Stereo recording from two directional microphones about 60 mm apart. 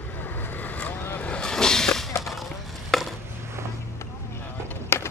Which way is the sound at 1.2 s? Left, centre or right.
Centre.